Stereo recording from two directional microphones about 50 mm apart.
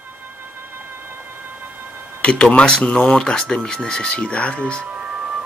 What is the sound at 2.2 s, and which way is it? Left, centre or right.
Speech, left.